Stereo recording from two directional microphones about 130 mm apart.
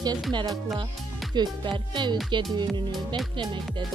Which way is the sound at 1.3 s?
35° right (ahead or behind).